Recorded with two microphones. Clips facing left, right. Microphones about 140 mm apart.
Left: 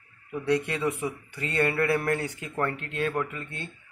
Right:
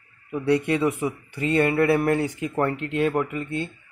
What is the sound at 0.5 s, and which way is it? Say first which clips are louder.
Speech: right 6 dB; 15° right (ahead or behind).